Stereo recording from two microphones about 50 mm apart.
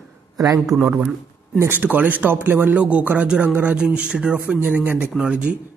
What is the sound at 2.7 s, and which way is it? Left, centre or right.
Speech, right.